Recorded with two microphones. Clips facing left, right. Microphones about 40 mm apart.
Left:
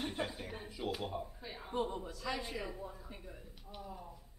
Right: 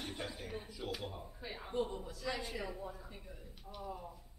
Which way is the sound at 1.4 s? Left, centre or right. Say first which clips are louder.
Right 1 dB; centre.